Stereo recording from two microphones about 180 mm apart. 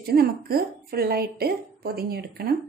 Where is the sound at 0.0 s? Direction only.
55° right (ahead or behind).